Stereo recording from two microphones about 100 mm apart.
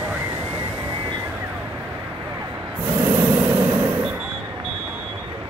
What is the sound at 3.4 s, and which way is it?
Vehicle, 20° right (ahead or behind).